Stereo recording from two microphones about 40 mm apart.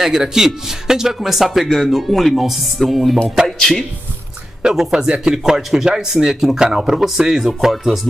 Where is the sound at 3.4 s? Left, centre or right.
Centre.